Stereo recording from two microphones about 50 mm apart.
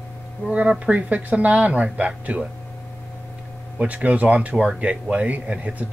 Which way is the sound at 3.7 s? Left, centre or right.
Right.